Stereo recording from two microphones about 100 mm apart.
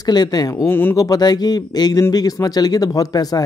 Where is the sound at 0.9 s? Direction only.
40° left (ahead or behind).